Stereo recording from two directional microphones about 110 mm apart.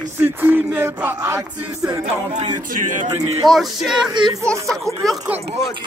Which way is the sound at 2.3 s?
90° right.